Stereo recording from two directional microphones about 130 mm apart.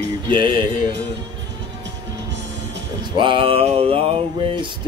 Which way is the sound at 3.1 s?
40° right (ahead or behind).